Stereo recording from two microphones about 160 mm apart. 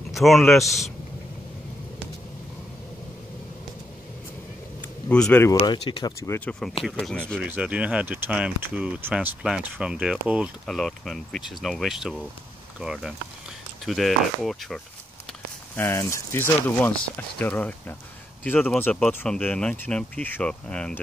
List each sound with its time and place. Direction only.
0.1 s speech: centre (ahead or behind)
5.0 s speech: 10° left (ahead or behind)
5.5 s speech: 25° left (ahead or behind)
6.2 s speech: 15° left (ahead or behind)
6.8 s speech: 5° left (ahead or behind)
7.4 s speech: 10° right (ahead or behind)
15.7 s speech: 15° left (ahead or behind)